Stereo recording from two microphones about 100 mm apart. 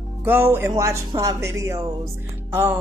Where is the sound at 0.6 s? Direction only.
35° right (ahead or behind).